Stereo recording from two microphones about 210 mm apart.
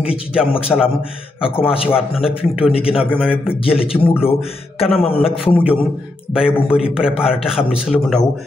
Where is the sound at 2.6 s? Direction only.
25° left (ahead or behind).